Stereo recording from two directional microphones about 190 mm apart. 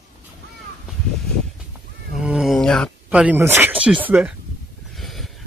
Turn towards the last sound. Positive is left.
turn(degrees=0)  # may be behind; listen again after turning